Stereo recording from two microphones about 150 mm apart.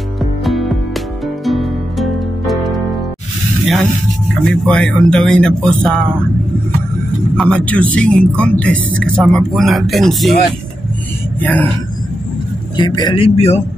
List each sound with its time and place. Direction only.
0.4 s music: centre (ahead or behind)
4.5 s speech: 5° left (ahead or behind)
7.3 s speech: 5° left (ahead or behind)
11.3 s speech: 10° left (ahead or behind)
12.7 s a man's voice: 30° left (ahead or behind)